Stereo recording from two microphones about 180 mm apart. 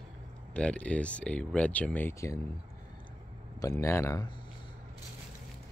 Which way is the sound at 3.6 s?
15° left (ahead or behind).